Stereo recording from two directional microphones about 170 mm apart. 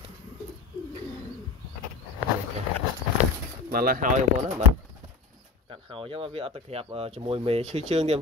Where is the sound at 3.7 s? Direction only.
60° right (ahead or behind).